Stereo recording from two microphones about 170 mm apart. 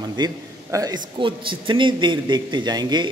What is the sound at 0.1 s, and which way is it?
A man's voice, 20° right (ahead or behind).